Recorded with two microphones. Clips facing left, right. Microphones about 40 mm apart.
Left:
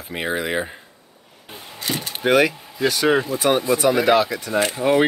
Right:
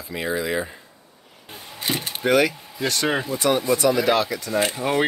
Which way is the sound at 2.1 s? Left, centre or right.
Centre.